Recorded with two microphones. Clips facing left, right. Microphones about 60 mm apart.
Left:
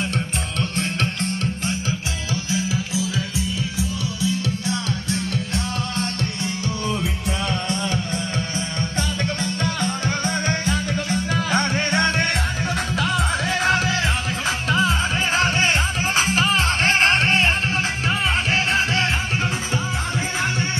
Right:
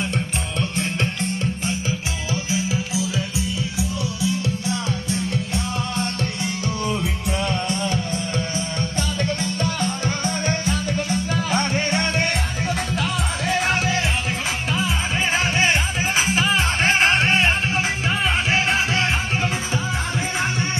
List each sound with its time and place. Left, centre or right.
0.1 s music: centre
2.3 s music: right
3.0 s music: left
4.2 s music: right
8.5 s music: left
16.8 s music: centre